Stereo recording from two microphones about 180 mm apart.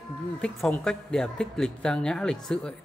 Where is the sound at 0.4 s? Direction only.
5° left (ahead or behind).